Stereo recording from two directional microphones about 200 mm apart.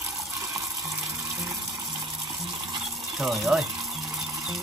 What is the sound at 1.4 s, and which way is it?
Water, 20° right (ahead or behind).